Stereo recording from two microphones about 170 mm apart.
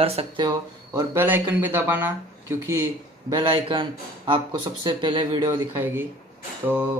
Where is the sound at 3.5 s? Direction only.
30° right (ahead or behind).